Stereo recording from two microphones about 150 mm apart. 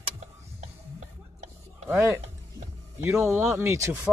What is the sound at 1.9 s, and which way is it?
Speech, 20° right (ahead or behind).